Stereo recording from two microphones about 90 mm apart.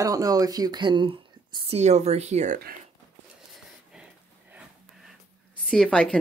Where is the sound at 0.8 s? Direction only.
60° right (ahead or behind).